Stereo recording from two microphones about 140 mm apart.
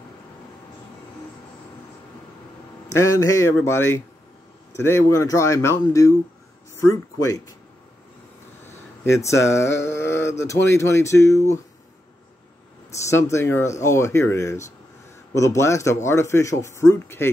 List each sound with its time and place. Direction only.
2.9 s speech: 20° left (ahead or behind)
8.6 s speech: 20° left (ahead or behind)
13.1 s speech: 20° left (ahead or behind)